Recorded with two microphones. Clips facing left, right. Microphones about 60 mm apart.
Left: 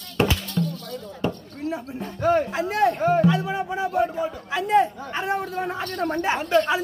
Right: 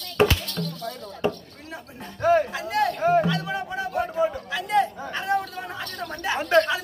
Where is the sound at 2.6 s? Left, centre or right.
Left.